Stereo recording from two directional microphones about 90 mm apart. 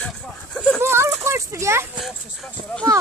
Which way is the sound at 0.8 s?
30° right (ahead or behind).